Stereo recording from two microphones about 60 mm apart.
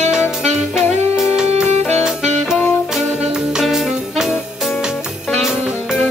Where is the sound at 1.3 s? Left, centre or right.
Centre.